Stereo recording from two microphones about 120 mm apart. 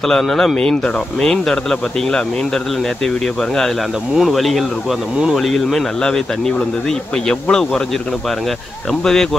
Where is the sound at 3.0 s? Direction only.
5° left (ahead or behind).